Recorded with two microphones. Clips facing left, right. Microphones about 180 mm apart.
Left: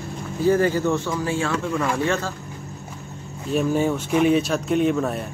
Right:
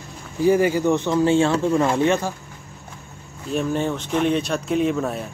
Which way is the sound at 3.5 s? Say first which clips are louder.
Left 2 dB; 5° left (ahead or behind).